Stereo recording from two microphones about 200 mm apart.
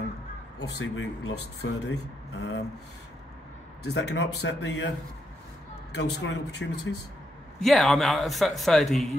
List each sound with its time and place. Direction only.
0.7 s speech: 65° left (ahead or behind)
3.8 s speech: 60° left (ahead or behind)
7.6 s speech: centre (ahead or behind)